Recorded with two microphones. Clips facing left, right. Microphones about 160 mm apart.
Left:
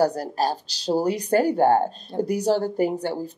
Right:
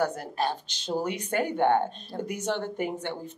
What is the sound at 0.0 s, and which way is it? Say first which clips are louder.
Speech: left 6 dB; 35° left (ahead or behind).